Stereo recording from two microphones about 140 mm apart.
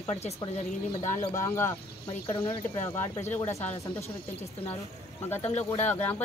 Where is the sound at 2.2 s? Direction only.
40° left (ahead or behind).